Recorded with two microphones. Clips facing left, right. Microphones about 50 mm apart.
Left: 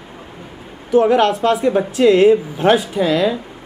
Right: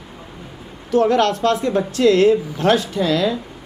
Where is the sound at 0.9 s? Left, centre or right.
Centre.